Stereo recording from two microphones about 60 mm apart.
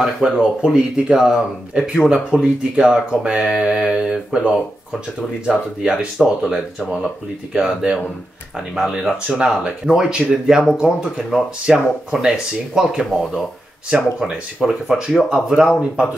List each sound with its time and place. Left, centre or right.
0.2 s speech: centre
5.8 s speech: centre
13.0 s speech: centre
13.8 s speech: centre
14.3 s speech: centre